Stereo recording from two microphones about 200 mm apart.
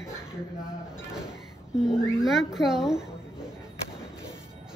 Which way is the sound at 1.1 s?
5° right (ahead or behind).